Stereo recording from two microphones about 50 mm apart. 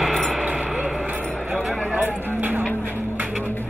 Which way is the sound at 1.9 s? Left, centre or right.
Right.